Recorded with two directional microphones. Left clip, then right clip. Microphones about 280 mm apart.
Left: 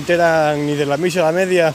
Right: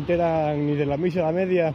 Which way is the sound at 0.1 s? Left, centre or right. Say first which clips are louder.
Left 8 dB; left.